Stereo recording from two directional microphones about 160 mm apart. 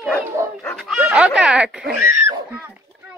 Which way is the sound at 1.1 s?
5° right (ahead or behind).